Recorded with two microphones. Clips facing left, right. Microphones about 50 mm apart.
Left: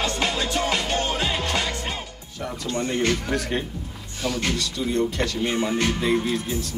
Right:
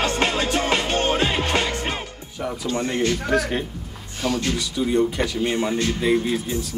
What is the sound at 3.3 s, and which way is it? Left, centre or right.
Speech, centre.